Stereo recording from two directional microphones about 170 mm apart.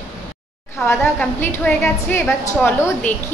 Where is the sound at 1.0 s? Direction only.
15° left (ahead or behind).